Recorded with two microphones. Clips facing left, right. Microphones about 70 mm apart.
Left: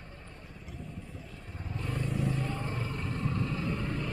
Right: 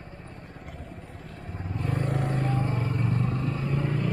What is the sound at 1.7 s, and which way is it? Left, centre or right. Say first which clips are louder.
Vehicle: right 5 dB; right.